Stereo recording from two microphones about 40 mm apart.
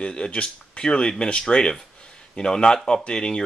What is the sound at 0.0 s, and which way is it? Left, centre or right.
Speech, left.